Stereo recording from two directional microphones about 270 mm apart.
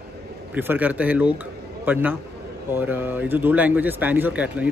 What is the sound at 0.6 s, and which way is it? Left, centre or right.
Speech, centre.